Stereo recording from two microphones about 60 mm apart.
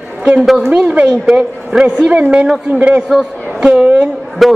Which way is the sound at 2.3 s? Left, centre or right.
Centre.